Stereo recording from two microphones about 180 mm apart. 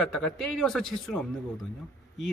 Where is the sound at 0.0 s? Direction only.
Centre (ahead or behind).